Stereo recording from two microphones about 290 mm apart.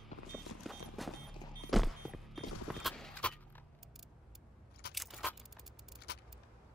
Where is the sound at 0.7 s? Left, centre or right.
Centre.